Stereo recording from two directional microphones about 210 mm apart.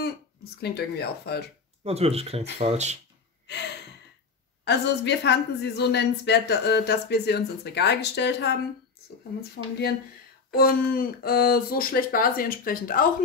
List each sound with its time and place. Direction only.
0.6 s a woman's voice: 50° left (ahead or behind)
1.9 s speech: 30° right (ahead or behind)
3.5 s a woman's voice: 55° left (ahead or behind)
4.6 s a woman's voice: 55° left (ahead or behind)
10.5 s a woman's voice: 45° left (ahead or behind)